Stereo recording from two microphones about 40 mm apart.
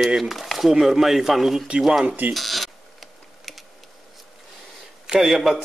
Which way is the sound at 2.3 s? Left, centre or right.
Centre.